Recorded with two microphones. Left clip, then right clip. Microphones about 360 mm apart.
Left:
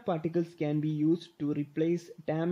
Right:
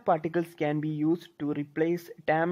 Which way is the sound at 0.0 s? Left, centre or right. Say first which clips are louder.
Right 5 dB; right.